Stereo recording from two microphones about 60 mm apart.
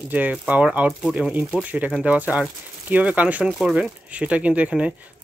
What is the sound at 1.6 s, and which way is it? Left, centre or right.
Speech, right.